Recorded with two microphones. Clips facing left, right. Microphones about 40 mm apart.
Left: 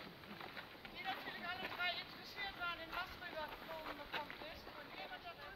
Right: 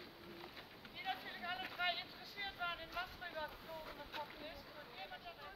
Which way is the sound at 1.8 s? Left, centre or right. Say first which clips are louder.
Right 2 dB; centre.